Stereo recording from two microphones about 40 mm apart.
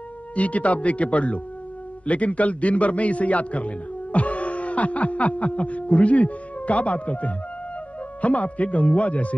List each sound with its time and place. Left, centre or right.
0.4 s a man's voice: left